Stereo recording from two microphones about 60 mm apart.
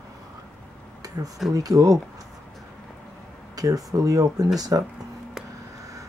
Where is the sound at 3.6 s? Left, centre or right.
Right.